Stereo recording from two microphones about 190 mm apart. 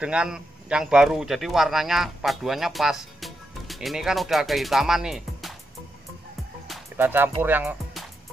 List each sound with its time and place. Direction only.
0.0 s a man's voice: 5° right (ahead or behind)
7.0 s speech: 10° right (ahead or behind)